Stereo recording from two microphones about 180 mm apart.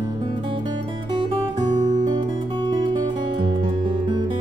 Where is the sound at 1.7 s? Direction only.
40° right (ahead or behind).